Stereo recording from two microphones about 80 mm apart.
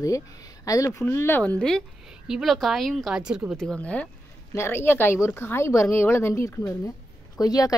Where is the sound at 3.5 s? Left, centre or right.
Centre.